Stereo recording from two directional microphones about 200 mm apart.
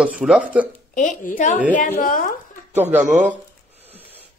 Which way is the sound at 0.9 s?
40° left (ahead or behind).